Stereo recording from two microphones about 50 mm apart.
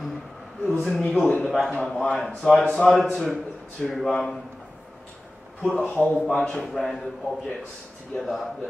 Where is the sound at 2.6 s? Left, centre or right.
Left.